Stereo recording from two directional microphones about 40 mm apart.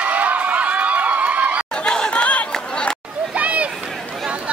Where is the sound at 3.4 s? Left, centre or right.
Right.